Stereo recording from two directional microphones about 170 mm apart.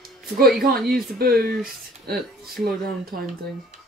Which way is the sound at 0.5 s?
60° right (ahead or behind).